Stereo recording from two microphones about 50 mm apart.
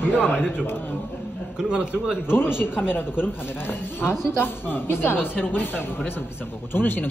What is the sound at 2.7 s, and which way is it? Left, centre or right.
A man's voice, left.